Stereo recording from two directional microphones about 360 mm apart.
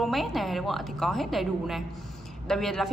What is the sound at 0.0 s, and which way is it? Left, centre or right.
A woman's voice, centre.